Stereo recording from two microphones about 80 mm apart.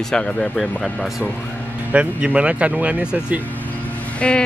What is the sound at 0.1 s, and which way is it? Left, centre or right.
Speech, centre.